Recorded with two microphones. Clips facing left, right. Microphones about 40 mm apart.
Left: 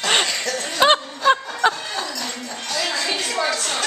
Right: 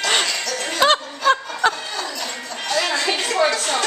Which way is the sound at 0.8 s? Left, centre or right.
Centre.